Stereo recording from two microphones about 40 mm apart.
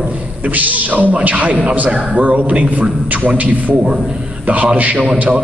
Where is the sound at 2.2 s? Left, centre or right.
Right.